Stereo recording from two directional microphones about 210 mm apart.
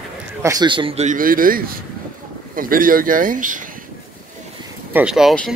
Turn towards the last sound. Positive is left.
turn(degrees=0)  # may be behind; listen again after turning